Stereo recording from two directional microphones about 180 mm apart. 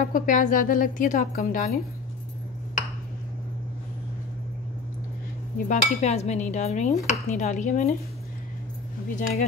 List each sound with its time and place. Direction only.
0.0 s a woman's voice: 45° left (ahead or behind)
5.7 s chink: 40° left (ahead or behind)
7.1 s a woman's voice: 40° left (ahead or behind)